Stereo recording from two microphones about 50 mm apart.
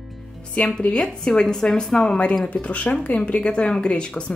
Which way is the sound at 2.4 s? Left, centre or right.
Left.